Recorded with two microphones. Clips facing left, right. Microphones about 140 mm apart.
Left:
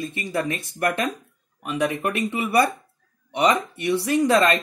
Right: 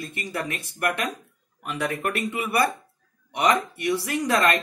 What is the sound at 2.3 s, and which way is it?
Speech, 30° left (ahead or behind).